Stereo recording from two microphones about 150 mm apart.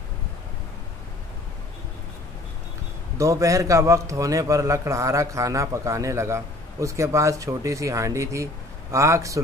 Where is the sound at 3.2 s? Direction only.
20° right (ahead or behind).